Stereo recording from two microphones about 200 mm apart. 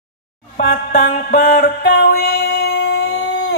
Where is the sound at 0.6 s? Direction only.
55° left (ahead or behind).